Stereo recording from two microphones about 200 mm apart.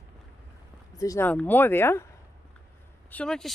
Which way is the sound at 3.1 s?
5° left (ahead or behind).